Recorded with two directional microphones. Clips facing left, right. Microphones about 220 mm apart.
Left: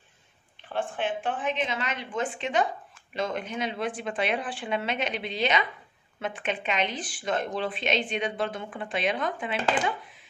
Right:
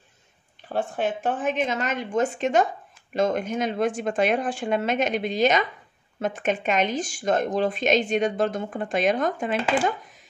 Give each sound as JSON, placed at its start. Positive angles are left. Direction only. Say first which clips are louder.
{"t": 0.7, "sound": "speech", "louder": "right 4 dB", "side_deg": -40}